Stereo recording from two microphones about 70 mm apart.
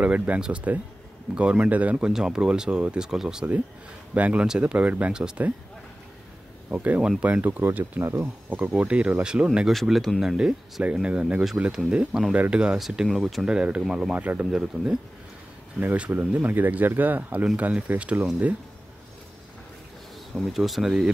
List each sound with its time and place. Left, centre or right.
0.0 s speech: centre
4.1 s speech: centre
6.7 s speech: centre; by 8.5 s right
8.5 s speech: centre
9.7 s speech: centre
10.2 s speech: centre
13.5 s speech: centre
14.1 s speech: right
14.5 s speech: centre
15.8 s speech: right
20.5 s speech: centre